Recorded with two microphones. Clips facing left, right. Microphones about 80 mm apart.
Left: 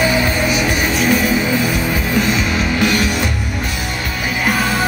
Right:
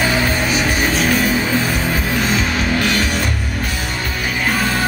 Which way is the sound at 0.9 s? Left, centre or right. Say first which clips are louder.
Left 1 dB; left.